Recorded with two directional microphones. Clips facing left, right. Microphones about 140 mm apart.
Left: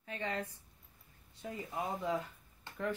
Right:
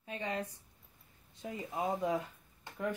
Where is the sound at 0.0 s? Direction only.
20° right (ahead or behind).